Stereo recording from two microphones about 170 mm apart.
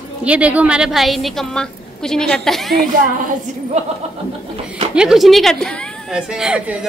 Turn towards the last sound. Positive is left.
turn(degrees=-5)  # may be behind; listen again after turning